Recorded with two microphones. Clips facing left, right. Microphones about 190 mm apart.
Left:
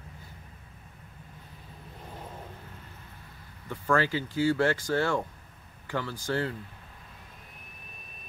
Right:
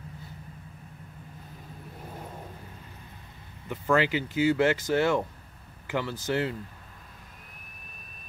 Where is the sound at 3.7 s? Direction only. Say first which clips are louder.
Right 2 dB; 20° right (ahead or behind).